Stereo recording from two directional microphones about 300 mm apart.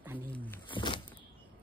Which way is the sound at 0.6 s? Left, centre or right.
Centre.